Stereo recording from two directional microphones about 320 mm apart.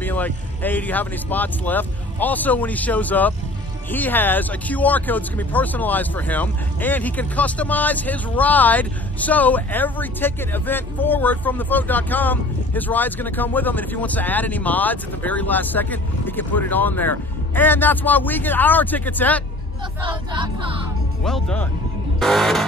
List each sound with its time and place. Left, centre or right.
0.0 s speech: centre
20.0 s speech: centre
21.2 s speech: centre